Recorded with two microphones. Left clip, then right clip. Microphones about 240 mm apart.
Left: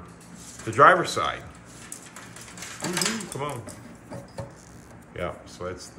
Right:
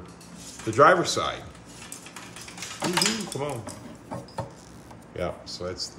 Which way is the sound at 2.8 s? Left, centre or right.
Centre.